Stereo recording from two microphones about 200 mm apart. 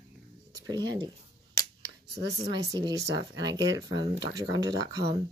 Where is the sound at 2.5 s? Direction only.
20° right (ahead or behind).